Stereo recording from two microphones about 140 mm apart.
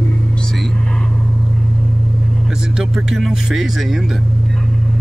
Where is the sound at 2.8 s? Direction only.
5° right (ahead or behind).